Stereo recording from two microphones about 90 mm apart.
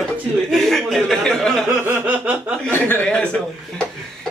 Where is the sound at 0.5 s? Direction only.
5° left (ahead or behind).